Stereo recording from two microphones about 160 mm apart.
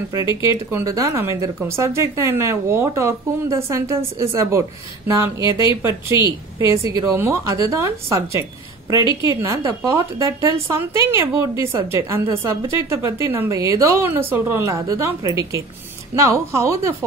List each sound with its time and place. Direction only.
0.4 s a woman's voice: 15° right (ahead or behind)